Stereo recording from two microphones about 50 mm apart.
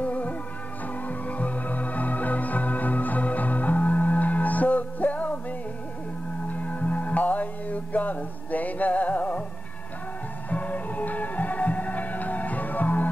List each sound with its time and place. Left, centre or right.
0.0 s music: left
6.4 s music: left
10.5 s music: left